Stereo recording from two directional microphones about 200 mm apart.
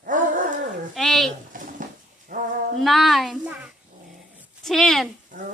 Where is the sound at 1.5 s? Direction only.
45° right (ahead or behind).